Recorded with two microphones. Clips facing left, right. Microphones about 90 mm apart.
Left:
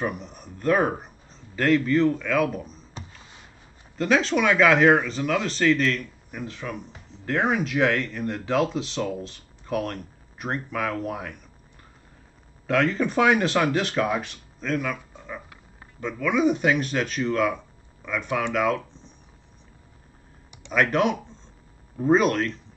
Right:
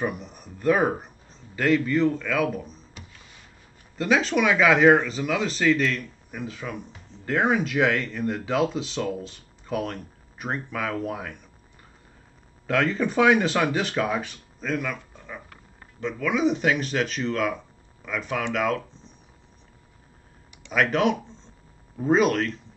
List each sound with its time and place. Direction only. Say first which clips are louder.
0.0 s speech: even; centre (ahead or behind)
3.9 s speech: left 1 dB; centre (ahead or behind)
12.6 s speech: left 1 dB; centre (ahead or behind)
20.7 s speech: even; centre (ahead or behind)